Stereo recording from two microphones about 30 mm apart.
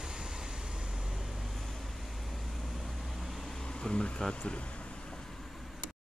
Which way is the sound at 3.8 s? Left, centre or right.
Left.